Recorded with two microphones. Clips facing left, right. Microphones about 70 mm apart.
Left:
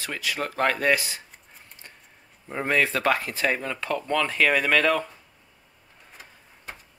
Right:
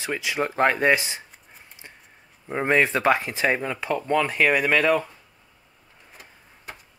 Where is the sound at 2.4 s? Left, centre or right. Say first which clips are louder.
Right 3 dB; centre.